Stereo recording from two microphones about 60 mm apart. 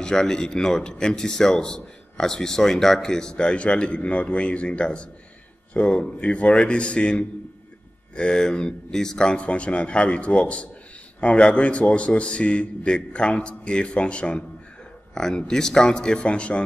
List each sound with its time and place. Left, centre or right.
0.0 s a man's voice: centre